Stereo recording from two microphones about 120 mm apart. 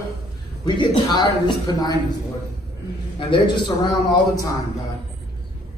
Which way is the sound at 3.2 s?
40° left (ahead or behind).